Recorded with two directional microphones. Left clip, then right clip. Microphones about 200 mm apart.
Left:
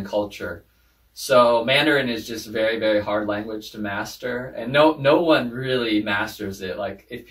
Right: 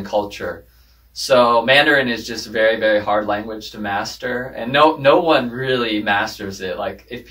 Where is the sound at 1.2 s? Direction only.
5° left (ahead or behind).